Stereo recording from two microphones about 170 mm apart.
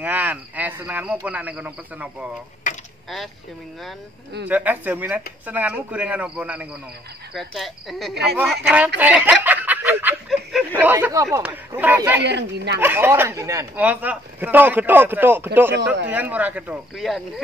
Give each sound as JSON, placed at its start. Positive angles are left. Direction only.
{"t": 0.0, "sound": "a man's voice", "side_deg": -10}
{"t": 4.5, "sound": "a man's voice", "side_deg": -10}
{"t": 7.3, "sound": "cricket", "side_deg": 0}
{"t": 8.4, "sound": "a man's voice", "side_deg": -5}
{"t": 12.2, "sound": "speech", "side_deg": -85}
{"t": 12.8, "sound": "a man's voice", "side_deg": -15}